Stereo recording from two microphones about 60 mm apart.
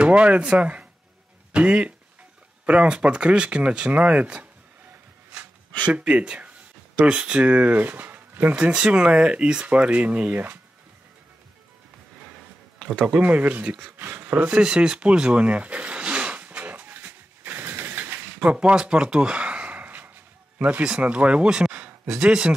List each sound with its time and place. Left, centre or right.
0.0 s speech: centre
5.9 s speech: right
12.7 s a sound: centre
13.2 s speech: right
14.6 s a sound: centre; by 18.5 s right
18.5 s speech: centre